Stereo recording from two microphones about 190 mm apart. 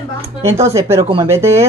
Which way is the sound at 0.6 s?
15° right (ahead or behind).